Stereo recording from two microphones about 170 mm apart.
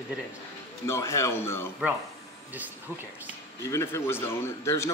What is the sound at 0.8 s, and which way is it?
Speech, 15° left (ahead or behind).